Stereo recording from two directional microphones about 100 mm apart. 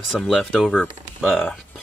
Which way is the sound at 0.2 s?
10° left (ahead or behind).